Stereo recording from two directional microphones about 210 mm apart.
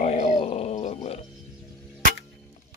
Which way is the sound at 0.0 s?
30° left (ahead or behind).